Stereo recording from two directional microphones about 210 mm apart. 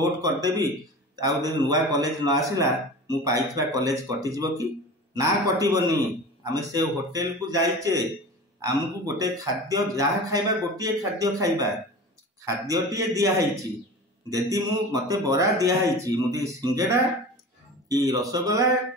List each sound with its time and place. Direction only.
0.0 s speech: 15° right (ahead or behind)